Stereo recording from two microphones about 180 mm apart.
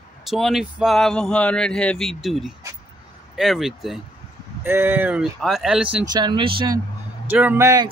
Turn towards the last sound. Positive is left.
turn(degrees=-15)  # may be behind; listen again after turning